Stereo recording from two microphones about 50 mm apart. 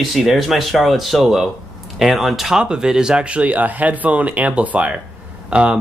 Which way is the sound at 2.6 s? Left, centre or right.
Centre.